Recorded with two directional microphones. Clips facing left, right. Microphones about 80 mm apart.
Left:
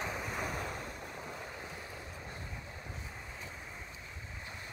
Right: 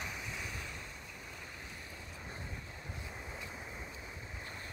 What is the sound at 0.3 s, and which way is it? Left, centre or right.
Waves, left.